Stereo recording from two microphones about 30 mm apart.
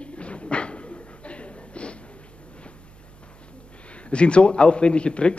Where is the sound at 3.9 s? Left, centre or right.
Left.